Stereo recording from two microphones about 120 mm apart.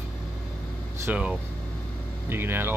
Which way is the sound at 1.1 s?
10° right (ahead or behind).